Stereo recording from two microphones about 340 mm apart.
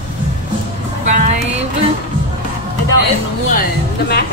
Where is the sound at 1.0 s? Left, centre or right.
Right.